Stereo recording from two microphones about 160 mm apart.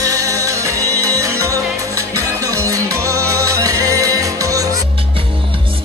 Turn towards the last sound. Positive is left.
turn(degrees=-20)  # may be behind; listen again after turning